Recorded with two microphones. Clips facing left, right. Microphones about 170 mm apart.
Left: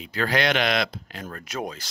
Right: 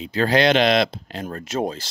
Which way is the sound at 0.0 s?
25° right (ahead or behind).